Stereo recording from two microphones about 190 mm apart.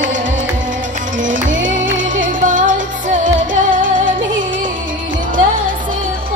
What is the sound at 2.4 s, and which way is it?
Music, 45° right (ahead or behind).